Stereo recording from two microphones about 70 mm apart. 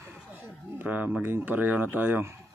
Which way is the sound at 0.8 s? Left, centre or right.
Right.